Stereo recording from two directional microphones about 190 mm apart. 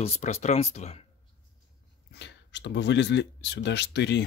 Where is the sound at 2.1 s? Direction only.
65° left (ahead or behind).